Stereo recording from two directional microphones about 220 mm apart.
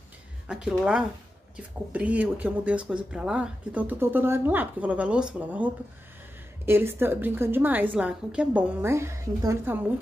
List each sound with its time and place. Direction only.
0.5 s speech: 5° right (ahead or behind)